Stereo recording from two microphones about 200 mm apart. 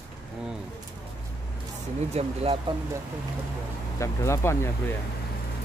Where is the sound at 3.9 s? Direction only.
15° left (ahead or behind).